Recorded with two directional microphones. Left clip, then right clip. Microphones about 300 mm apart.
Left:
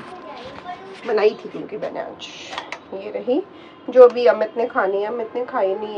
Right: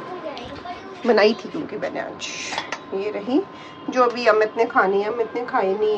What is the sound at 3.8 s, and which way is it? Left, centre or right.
A woman's voice, centre.